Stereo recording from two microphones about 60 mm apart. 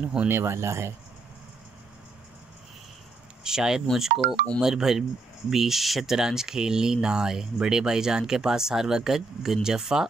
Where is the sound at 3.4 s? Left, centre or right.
Centre.